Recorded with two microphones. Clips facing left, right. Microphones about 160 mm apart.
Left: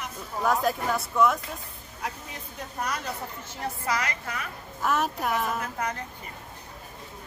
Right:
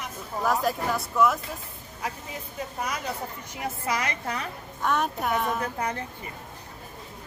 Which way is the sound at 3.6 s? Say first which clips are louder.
Even; 25° right (ahead or behind).